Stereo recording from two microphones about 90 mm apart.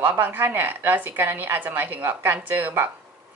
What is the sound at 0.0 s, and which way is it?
A woman's voice, 25° right (ahead or behind).